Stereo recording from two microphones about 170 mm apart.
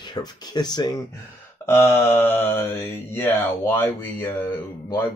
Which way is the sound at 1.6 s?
15° left (ahead or behind).